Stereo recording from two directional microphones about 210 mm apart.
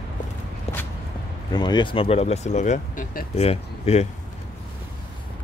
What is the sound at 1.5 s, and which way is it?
Speech, 20° left (ahead or behind).